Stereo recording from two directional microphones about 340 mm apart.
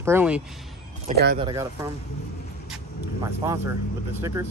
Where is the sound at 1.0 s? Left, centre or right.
Right.